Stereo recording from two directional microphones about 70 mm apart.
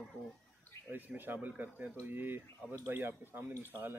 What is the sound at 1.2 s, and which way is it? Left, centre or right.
Speech, right.